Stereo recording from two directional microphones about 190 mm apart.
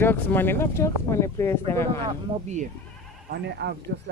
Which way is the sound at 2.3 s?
30° right (ahead or behind).